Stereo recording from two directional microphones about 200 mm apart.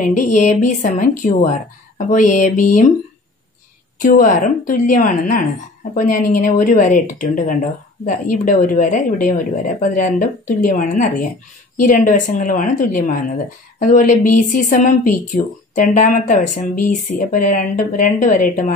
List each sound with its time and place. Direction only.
0.0 s speech: 40° left (ahead or behind)
4.0 s speech: 45° left (ahead or behind)